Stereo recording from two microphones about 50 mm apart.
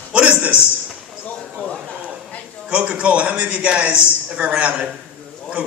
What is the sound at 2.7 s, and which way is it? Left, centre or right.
A man's voice, right.